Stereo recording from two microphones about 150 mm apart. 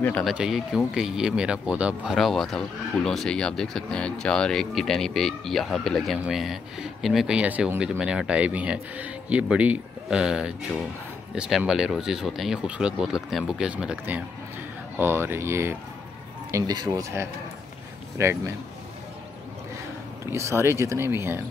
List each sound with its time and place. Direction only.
0.2 s speech: 5° right (ahead or behind); by 18.5 s 20° right (ahead or behind)
20.2 s speech: 20° right (ahead or behind)